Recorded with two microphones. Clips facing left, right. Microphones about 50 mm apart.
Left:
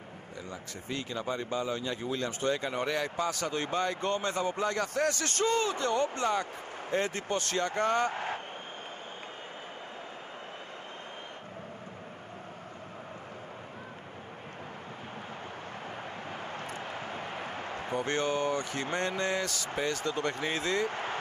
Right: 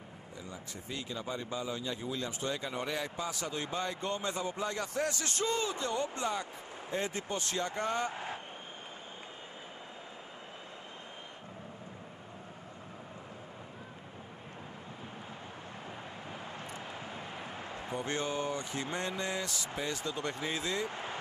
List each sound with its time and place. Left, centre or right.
0.5 s speech: left
16.3 s speech: left